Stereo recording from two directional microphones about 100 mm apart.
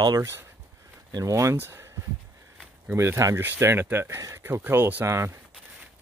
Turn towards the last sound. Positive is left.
turn(degrees=-25)  # may be behind; listen again after turning